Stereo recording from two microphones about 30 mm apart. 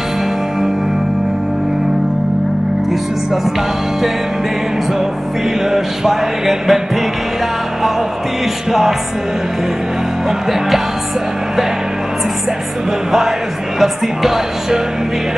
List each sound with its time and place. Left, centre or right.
5.7 s music: centre
13.7 s music: centre